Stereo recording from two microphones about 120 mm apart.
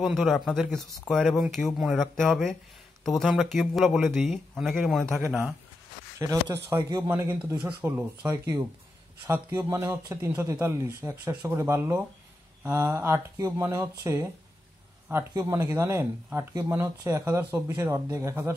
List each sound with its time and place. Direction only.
0.0 s speech: centre (ahead or behind)
6.1 s a man's voice: 25° right (ahead or behind)
7.1 s speech: 15° right (ahead or behind)
8.3 s speech: 20° right (ahead or behind)
15.3 s speech: 25° right (ahead or behind)